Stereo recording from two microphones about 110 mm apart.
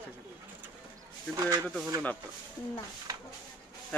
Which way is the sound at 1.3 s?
30° right (ahead or behind).